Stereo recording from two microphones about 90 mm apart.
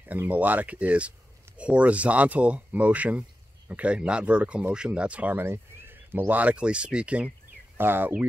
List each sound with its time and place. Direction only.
0.0 s speech: 20° right (ahead or behind)